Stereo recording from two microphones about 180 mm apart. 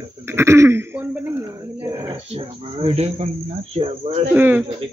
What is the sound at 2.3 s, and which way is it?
Speech, 35° right (ahead or behind).